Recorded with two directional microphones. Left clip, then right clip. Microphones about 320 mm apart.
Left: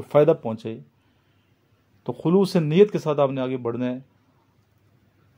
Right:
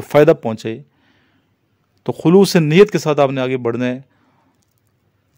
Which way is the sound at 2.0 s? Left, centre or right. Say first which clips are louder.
Right 9 dB; right.